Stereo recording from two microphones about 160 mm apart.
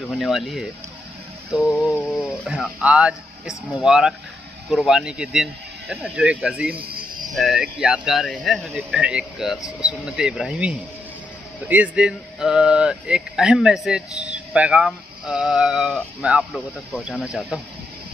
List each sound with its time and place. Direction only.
0.0 s speech: centre (ahead or behind)
2.0 s a sound: 5° left (ahead or behind)
2.2 s speech: 5° right (ahead or behind)
6.7 s music: 70° right (ahead or behind)
7.3 s speech: centre (ahead or behind)